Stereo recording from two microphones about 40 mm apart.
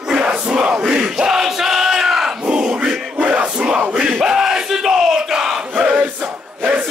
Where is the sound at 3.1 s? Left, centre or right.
Right.